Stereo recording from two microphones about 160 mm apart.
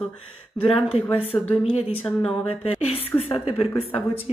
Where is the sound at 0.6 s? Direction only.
35° left (ahead or behind).